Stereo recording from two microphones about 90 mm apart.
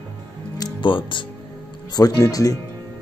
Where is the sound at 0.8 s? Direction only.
65° left (ahead or behind).